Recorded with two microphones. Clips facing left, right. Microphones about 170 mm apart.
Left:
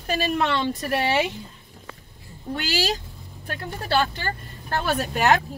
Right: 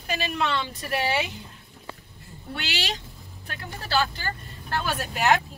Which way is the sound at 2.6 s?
40° left (ahead or behind).